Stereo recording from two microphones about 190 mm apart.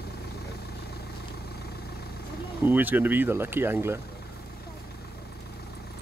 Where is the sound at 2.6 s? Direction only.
10° right (ahead or behind).